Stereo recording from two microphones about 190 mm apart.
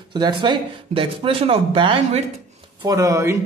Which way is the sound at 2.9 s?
15° right (ahead or behind).